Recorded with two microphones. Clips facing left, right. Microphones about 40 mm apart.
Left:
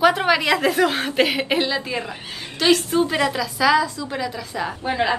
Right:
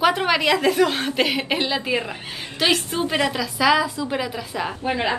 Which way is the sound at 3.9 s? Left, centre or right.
Centre.